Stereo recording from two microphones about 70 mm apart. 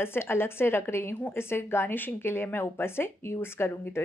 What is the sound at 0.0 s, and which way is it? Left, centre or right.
Speech, left.